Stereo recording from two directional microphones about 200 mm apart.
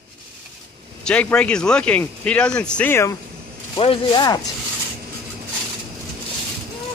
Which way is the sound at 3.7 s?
25° left (ahead or behind).